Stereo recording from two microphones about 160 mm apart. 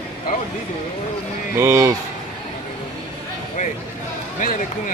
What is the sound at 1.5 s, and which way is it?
Speech, 15° right (ahead or behind).